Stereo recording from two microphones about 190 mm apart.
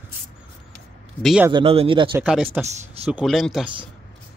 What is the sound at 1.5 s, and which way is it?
Speech, 30° right (ahead or behind).